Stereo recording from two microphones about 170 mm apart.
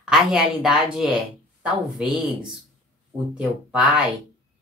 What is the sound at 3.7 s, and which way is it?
Speech, 5° right (ahead or behind).